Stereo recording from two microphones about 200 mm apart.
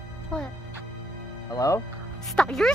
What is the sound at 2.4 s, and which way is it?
Speech, 5° left (ahead or behind).